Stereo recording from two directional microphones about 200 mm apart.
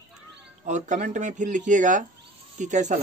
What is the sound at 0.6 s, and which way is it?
Speech, 35° right (ahead or behind).